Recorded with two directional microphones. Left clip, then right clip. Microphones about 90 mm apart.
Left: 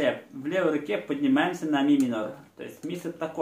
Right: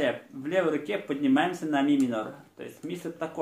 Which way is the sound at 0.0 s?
25° right (ahead or behind).